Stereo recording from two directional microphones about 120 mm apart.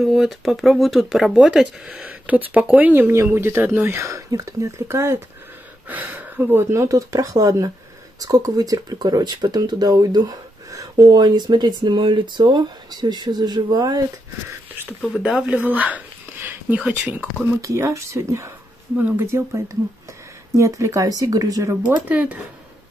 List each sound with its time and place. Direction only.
0.0 s speech: centre (ahead or behind); by 14.0 s 35° right (ahead or behind)
15.0 s speech: 5° right (ahead or behind)
16.4 s a sound: 15° right (ahead or behind)
17.6 s speech: 25° right (ahead or behind)
21.8 s speech: 10° right (ahead or behind)